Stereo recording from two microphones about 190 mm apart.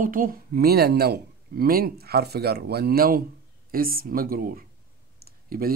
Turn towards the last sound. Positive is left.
turn(degrees=-50)  # may be behind; listen again after turning